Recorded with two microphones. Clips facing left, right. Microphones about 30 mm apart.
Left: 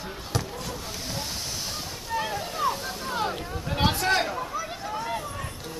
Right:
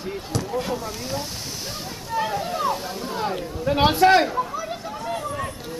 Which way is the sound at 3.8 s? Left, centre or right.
Centre.